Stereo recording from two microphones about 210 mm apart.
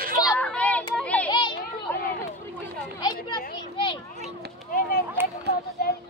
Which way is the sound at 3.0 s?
20° left (ahead or behind).